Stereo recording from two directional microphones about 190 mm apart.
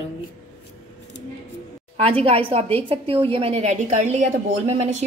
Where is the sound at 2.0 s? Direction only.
30° right (ahead or behind).